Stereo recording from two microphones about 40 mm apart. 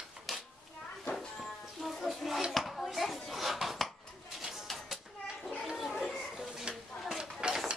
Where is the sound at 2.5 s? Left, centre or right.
Centre.